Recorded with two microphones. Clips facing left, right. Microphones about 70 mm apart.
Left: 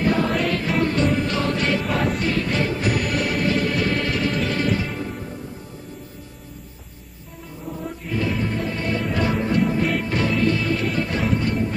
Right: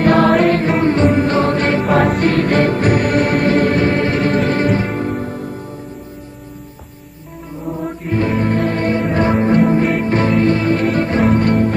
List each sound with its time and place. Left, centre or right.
0.0 s music: right
1.9 s music: right
7.8 s music: right
9.3 s music: right
11.2 s music: right